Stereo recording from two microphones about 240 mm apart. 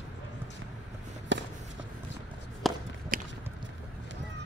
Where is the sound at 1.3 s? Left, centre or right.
Right.